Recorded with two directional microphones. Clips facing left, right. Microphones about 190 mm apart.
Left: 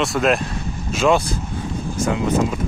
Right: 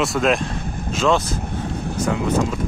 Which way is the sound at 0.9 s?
10° left (ahead or behind).